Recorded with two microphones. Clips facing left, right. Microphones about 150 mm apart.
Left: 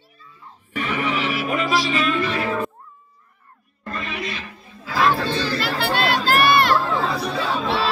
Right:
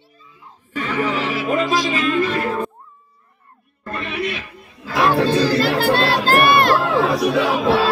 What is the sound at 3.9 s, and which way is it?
Music, 65° right (ahead or behind).